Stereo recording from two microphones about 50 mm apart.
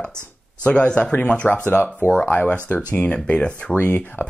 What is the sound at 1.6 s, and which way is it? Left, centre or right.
Speech, left.